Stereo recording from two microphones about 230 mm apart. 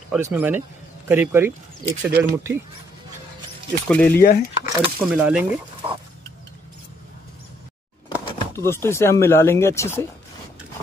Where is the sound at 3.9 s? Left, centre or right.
Centre.